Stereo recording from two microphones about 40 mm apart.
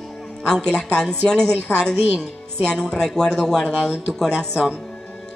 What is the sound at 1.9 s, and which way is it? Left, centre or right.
Speech, right.